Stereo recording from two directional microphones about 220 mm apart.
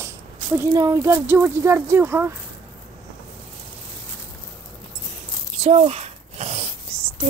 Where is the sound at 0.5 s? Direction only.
15° right (ahead or behind).